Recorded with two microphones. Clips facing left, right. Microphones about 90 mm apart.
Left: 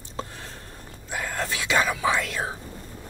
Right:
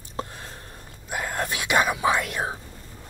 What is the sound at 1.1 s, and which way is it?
Whispering, 15° right (ahead or behind).